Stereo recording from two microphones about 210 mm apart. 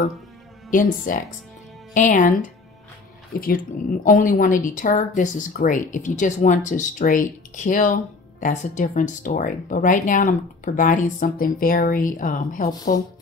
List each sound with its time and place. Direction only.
0.7 s speech: 40° left (ahead or behind)